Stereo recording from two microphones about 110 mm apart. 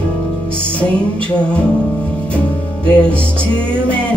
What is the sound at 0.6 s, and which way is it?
Music, 10° left (ahead or behind).